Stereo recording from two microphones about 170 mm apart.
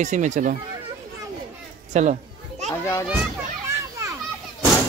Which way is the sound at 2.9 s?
20° left (ahead or behind).